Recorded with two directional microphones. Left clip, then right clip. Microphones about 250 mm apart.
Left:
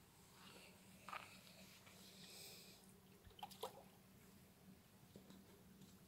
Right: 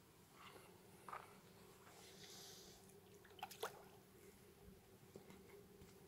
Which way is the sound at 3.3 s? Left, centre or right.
Centre.